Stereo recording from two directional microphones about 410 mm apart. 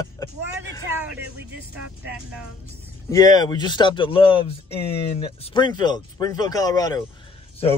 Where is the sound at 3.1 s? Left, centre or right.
Centre.